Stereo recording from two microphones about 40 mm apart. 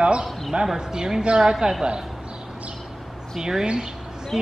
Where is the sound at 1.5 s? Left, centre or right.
Centre.